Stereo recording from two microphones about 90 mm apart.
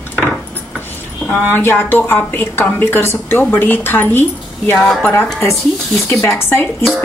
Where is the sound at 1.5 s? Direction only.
25° left (ahead or behind).